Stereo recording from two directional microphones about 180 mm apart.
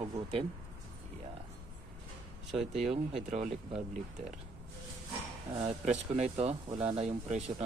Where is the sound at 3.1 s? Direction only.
40° right (ahead or behind).